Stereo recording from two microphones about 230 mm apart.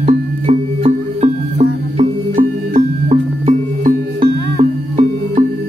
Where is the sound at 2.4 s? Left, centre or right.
Right.